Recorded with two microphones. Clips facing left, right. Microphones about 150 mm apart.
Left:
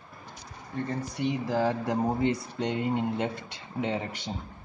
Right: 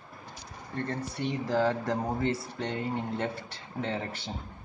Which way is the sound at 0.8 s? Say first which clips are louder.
Left 3 dB; 10° left (ahead or behind).